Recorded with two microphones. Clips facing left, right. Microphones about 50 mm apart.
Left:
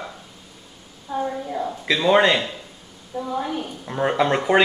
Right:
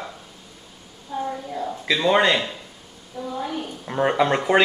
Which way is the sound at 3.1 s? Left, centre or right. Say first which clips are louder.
Left 4 dB; left.